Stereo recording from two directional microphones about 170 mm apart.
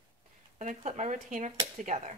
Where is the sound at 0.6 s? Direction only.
45° right (ahead or behind).